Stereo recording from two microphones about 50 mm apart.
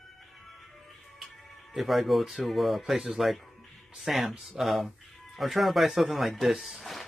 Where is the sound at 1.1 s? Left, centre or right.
Centre.